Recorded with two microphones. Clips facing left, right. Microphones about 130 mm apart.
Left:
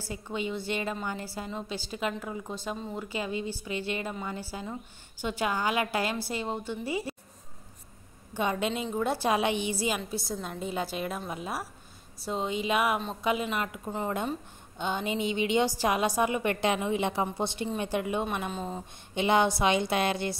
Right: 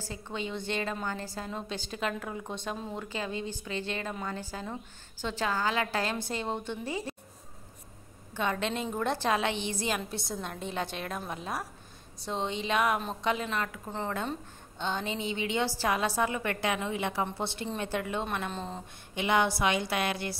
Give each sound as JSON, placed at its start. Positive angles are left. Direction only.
{"t": 0.1, "sound": "a woman's voice", "side_deg": 10}
{"t": 3.1, "sound": "a woman's voice", "side_deg": 10}
{"t": 8.3, "sound": "a woman's voice", "side_deg": 15}
{"t": 19.1, "sound": "a woman's voice", "side_deg": 25}